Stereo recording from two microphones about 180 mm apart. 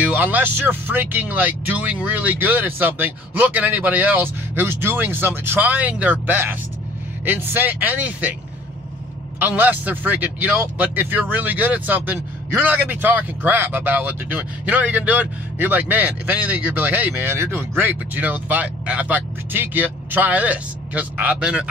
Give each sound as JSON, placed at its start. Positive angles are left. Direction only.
{"t": 0.0, "sound": "speech", "side_deg": -10}
{"t": 9.4, "sound": "speech", "side_deg": -10}